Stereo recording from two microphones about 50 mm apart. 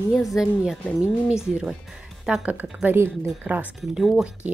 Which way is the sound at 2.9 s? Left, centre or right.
Right.